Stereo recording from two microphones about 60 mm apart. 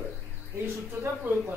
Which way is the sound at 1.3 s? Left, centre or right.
Right.